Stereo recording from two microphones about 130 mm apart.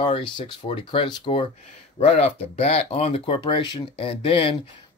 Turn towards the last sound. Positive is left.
turn(degrees=45)  # may be behind; listen again after turning